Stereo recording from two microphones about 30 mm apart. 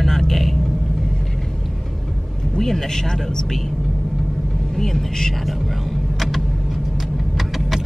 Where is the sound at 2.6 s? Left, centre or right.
Centre.